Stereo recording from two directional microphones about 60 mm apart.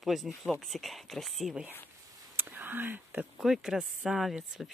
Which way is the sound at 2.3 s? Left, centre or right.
Right.